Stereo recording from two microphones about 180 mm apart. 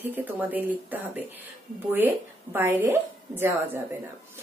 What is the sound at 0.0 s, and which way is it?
A woman's voice, 10° right (ahead or behind).